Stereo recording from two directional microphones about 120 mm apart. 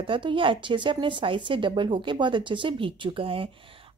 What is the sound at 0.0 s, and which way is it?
A woman's voice, 45° right (ahead or behind).